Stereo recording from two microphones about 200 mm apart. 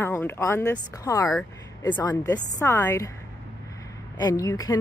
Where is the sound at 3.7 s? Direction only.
20° left (ahead or behind).